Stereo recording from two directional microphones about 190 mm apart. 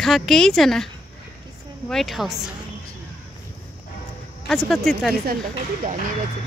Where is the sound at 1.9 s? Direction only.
Centre (ahead or behind).